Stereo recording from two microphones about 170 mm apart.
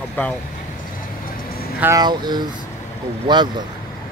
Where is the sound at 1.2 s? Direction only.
60° left (ahead or behind).